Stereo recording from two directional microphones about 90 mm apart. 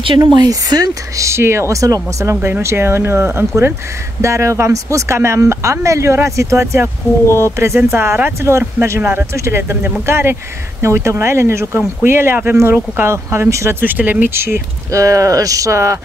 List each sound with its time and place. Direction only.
0.4 s speech: 45° right (ahead or behind)